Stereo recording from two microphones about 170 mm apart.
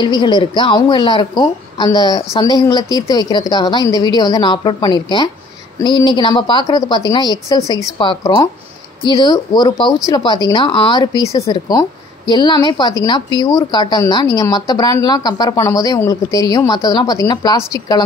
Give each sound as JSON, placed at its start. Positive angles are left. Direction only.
{"t": 0.0, "sound": "speech", "side_deg": 25}